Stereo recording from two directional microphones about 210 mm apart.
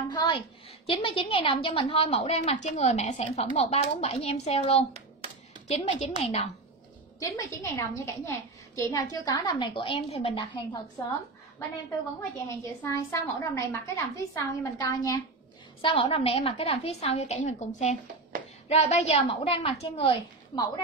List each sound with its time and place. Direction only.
0.1 s a woman's voice: 20° left (ahead or behind)
4.9 s hands: 30° right (ahead or behind)
5.7 s a woman's voice: 30° left (ahead or behind)
7.2 s a woman's voice: 15° left (ahead or behind)
12.4 s a woman's voice: 15° left (ahead or behind)